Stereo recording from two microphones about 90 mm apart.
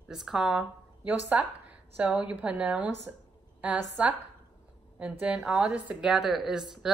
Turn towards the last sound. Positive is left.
turn(degrees=-5)  # may be behind; listen again after turning